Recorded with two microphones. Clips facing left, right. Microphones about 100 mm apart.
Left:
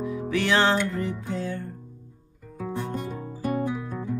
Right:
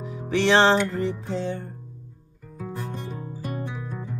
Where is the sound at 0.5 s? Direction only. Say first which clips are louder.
Right 4 dB; 30° right (ahead or behind).